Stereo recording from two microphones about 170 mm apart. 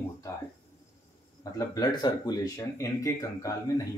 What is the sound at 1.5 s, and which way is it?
Speech, 20° left (ahead or behind).